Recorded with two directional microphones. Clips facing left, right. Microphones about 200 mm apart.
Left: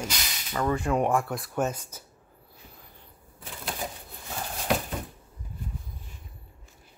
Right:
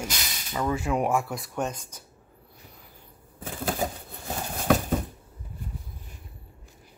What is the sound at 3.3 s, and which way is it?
Typewriter, 45° right (ahead or behind).